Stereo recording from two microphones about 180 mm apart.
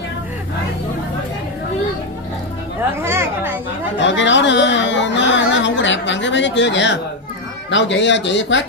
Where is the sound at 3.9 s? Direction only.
90° left.